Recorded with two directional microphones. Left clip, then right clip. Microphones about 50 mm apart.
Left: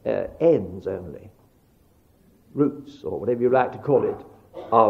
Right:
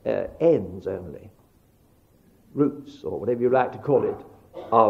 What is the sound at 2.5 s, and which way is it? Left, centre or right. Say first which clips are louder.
A man's voice: left 1 dB; right.